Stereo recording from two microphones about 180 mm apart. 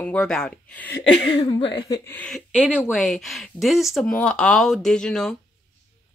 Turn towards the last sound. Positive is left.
turn(degrees=5)  # may be behind; listen again after turning